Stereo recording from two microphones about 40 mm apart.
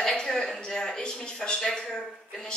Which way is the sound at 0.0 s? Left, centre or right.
Centre.